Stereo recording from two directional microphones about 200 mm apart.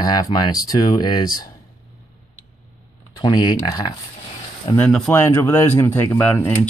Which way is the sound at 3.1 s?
20° left (ahead or behind).